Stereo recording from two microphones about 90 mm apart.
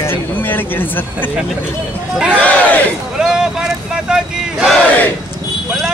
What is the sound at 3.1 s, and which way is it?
Crowd, 5° right (ahead or behind).